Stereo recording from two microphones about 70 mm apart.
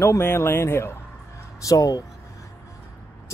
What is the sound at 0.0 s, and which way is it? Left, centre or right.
Speech, left.